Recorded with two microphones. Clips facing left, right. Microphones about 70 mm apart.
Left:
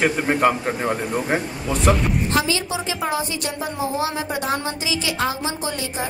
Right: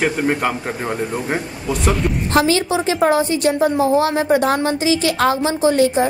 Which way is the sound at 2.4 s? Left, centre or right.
Right.